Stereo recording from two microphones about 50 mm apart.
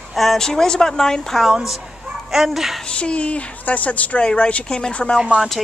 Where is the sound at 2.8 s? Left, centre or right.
Left.